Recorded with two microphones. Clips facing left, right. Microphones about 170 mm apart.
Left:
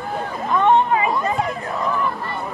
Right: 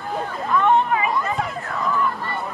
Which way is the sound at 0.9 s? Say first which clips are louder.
Left 2 dB; 25° left (ahead or behind).